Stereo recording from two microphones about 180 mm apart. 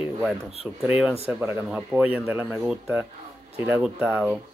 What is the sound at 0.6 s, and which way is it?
Speech, 10° right (ahead or behind).